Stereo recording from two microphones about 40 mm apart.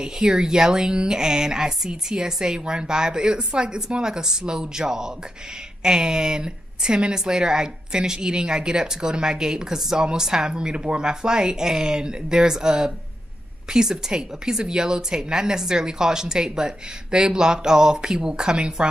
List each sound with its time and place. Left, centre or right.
0.0 s a woman's voice: centre